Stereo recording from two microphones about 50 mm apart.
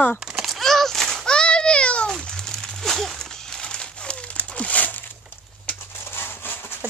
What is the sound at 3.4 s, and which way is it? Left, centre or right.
Crumpling, centre.